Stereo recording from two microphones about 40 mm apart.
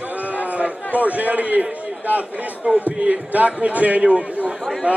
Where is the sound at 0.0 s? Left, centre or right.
Right.